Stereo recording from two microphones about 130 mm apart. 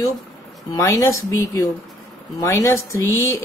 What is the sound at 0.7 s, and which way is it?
Speech, 25° left (ahead or behind).